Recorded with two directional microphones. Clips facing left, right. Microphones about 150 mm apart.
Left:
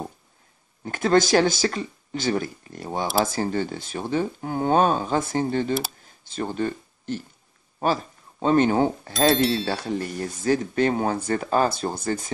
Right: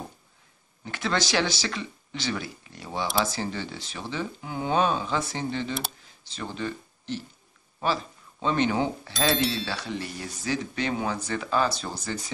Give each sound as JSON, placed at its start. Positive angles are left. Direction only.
{"t": 0.8, "sound": "speech", "side_deg": 45}